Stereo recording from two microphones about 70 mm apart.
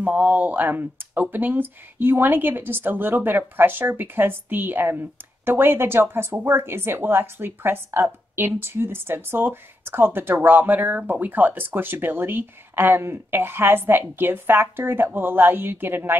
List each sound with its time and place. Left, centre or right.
0.0 s speech: right